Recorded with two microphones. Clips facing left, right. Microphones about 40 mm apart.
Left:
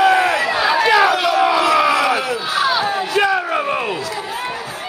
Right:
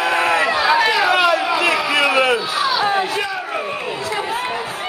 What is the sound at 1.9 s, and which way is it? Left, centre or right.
Crowd, right.